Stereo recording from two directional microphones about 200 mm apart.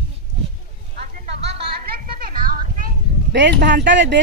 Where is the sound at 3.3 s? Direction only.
55° right (ahead or behind).